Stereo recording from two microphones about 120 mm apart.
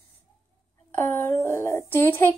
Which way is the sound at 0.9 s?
20° left (ahead or behind).